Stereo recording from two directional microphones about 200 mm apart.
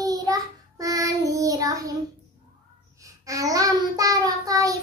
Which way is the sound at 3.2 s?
15° right (ahead or behind).